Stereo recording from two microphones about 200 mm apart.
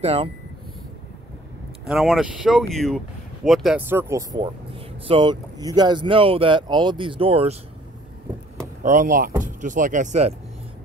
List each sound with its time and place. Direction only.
0.0 s speech: 30° right (ahead or behind)
1.9 s speech: centre (ahead or behind); by 7.5 s 30° right (ahead or behind)
8.8 s speech: 40° right (ahead or behind)